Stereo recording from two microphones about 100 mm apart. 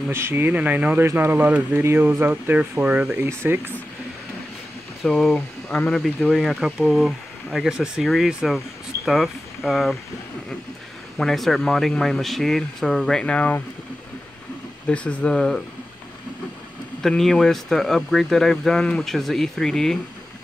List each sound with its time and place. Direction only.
0.1 s speech: 25° right (ahead or behind)
5.0 s speech: 5° left (ahead or behind)
6.3 s speech: 5° right (ahead or behind)
11.1 s speech: centre (ahead or behind)
14.9 s speech: 10° left (ahead or behind)
17.0 s speech: 5° left (ahead or behind)